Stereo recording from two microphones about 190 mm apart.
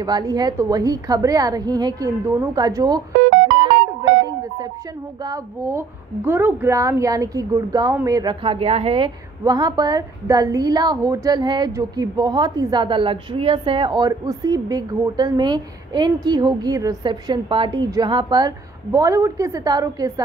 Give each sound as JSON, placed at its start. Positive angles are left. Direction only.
{"t": 0.0, "sound": "a woman's voice", "side_deg": -20}
{"t": 3.2, "sound": "music", "side_deg": -75}
{"t": 5.2, "sound": "a woman's voice", "side_deg": -15}